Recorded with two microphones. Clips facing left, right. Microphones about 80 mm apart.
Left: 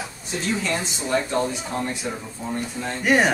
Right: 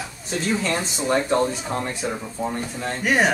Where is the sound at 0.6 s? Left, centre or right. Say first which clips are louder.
Right 3 dB; right.